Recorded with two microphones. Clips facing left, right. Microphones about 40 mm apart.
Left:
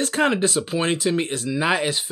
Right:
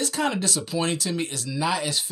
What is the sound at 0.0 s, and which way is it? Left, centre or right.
Speech, left.